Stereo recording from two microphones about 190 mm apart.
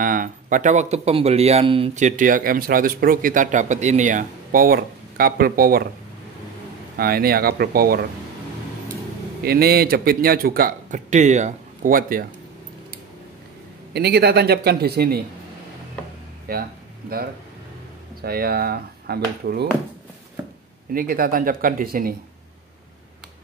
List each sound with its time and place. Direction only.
0.0 s a man's voice: 45° right (ahead or behind)
7.0 s a man's voice: 55° right (ahead or behind)
9.4 s a man's voice: 55° right (ahead or behind)
13.9 s a man's voice: 60° right (ahead or behind)
16.5 s a man's voice: 50° right (ahead or behind)
18.2 s a man's voice: 55° right (ahead or behind)
20.9 s a man's voice: 50° right (ahead or behind)